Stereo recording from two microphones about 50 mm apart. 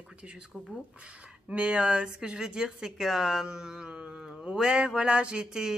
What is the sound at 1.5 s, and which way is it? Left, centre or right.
Speech, right.